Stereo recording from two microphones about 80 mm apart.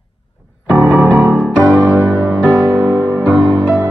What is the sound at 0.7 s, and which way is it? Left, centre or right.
Music, centre.